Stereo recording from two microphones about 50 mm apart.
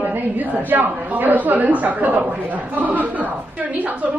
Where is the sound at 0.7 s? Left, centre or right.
Right.